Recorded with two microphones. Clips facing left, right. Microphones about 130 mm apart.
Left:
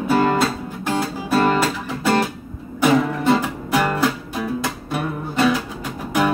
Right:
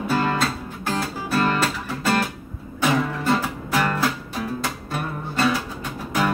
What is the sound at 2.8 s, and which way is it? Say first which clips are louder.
Music: left 5 dB; 15° left (ahead or behind).